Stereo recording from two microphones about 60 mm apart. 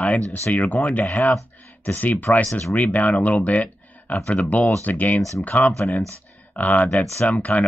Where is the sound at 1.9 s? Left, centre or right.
Left.